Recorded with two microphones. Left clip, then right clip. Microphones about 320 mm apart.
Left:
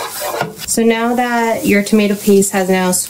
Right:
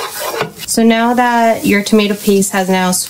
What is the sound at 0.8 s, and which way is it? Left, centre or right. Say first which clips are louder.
Speech: right 3 dB; right.